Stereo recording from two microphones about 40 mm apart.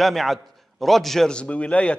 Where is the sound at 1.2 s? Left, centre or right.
Left.